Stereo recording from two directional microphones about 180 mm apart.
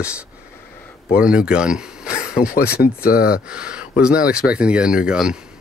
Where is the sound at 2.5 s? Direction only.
55° left (ahead or behind).